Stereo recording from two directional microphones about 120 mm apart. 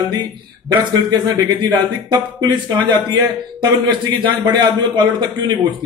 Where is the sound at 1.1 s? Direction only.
35° right (ahead or behind).